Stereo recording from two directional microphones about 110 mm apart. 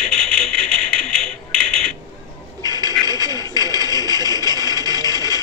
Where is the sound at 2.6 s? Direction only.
40° right (ahead or behind).